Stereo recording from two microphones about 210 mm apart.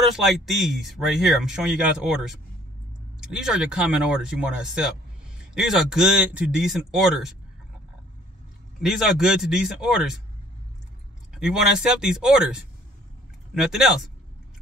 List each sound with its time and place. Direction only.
0.0 s speech: centre (ahead or behind)
8.8 s speech: centre (ahead or behind)
11.3 s speech: 5° right (ahead or behind)